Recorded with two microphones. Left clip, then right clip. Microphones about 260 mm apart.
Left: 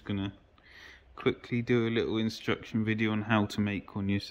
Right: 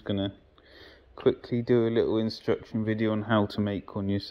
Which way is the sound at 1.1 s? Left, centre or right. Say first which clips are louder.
Right 5 dB; centre.